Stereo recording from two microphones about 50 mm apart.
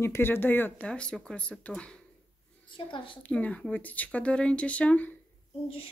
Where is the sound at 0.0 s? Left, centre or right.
Left.